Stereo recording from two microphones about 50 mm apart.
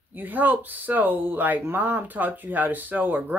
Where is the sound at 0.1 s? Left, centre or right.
Right.